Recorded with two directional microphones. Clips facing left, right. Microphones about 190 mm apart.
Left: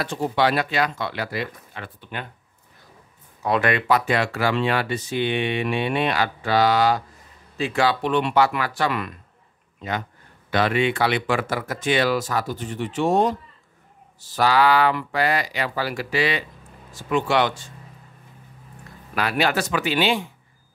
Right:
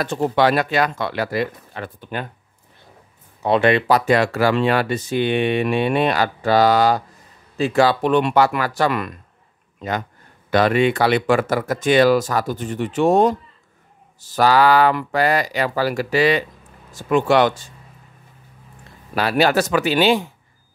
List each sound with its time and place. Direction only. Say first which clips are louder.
0.0 s speech: right 4 dB; 50° right (ahead or behind)
3.4 s a man's voice: right 5 dB; 25° right (ahead or behind); by 17.6 s 45° right (ahead or behind)
19.1 s speech: right 5 dB; 35° right (ahead or behind)